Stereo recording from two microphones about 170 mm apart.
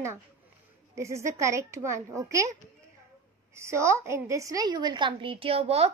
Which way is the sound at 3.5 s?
15° right (ahead or behind).